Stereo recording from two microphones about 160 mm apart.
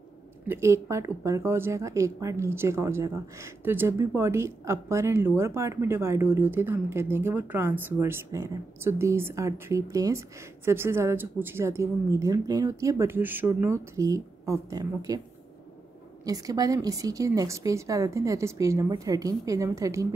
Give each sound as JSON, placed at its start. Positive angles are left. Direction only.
{"t": 0.5, "sound": "speech", "side_deg": -15}
{"t": 16.3, "sound": "a woman's voice", "side_deg": -20}